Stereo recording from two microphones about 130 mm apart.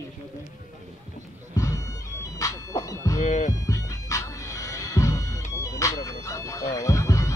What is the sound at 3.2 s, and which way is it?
Speech, 65° left (ahead or behind).